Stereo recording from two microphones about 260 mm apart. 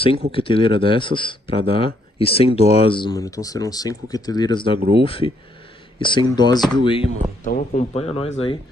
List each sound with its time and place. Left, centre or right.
0.3 s speech: centre